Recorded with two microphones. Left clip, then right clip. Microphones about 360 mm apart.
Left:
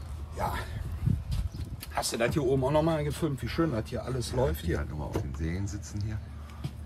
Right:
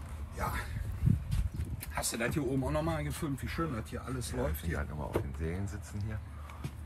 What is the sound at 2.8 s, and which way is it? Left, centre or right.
Speech, centre.